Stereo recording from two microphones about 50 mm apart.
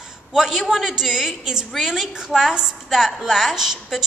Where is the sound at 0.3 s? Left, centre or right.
Centre.